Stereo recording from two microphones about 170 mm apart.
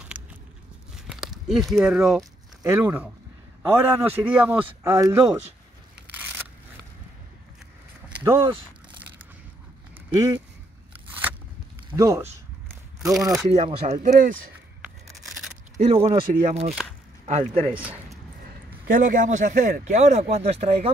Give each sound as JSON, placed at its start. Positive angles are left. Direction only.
{"t": 0.2, "sound": "biting", "side_deg": -10}
{"t": 1.0, "sound": "speech", "side_deg": -5}
{"t": 2.6, "sound": "a man's voice", "side_deg": -15}
{"t": 5.9, "sound": "crushing", "side_deg": -10}
{"t": 8.1, "sound": "speech", "side_deg": -15}
{"t": 10.1, "sound": "speech", "side_deg": -20}
{"t": 11.1, "sound": "scissors", "side_deg": -10}
{"t": 11.9, "sound": "a man's voice", "side_deg": -15}
{"t": 13.1, "sound": "speech", "side_deg": 0}
{"t": 13.6, "sound": "speech", "side_deg": -35}
{"t": 15.8, "sound": "speech", "side_deg": -35}
{"t": 17.7, "sound": "a sound", "side_deg": -10}
{"t": 18.9, "sound": "a man's voice", "side_deg": -50}